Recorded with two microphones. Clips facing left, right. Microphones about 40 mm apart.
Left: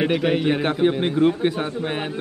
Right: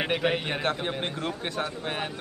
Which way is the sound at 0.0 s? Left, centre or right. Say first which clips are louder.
Left 7 dB; centre.